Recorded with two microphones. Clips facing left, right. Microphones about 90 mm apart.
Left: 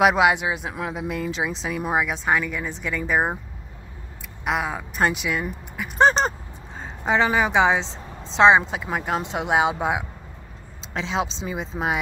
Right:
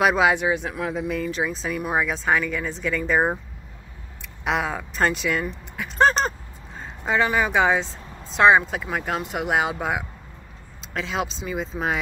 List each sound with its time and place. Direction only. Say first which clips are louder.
0.0 s a woman's voice: left 1 dB; 15° left (ahead or behind)
2.0 s speech: even; 5° left (ahead or behind)
4.5 s speech: right 1 dB; 5° left (ahead or behind)
5.9 s a woman's voice: left 1 dB; 20° left (ahead or behind)